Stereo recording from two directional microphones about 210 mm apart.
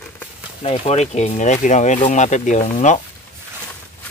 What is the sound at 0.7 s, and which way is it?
Speech, 30° left (ahead or behind).